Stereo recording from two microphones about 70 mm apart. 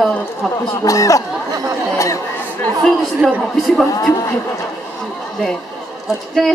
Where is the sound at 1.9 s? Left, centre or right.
Left.